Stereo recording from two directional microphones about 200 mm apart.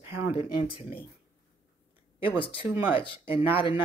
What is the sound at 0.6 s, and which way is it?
Speech, 25° left (ahead or behind).